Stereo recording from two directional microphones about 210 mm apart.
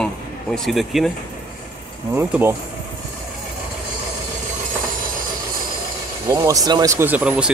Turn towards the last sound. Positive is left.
turn(degrees=-5)  # may be behind; listen again after turning